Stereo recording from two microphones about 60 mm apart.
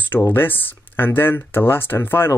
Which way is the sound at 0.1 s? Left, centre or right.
Left.